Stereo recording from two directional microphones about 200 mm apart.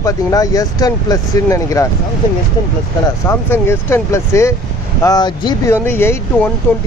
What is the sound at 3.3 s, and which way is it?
Speech, 10° left (ahead or behind).